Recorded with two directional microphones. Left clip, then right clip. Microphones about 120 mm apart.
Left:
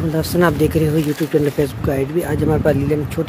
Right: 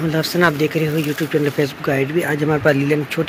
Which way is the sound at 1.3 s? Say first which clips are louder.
Left 1 dB; 25° left (ahead or behind).